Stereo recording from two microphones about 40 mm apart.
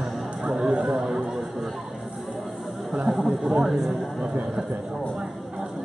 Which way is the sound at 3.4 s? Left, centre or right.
Centre.